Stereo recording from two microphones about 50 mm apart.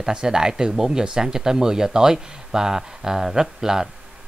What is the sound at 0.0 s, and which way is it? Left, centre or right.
Speech, centre.